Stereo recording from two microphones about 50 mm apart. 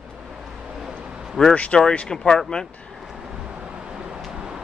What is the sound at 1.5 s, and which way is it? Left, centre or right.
Speech, left.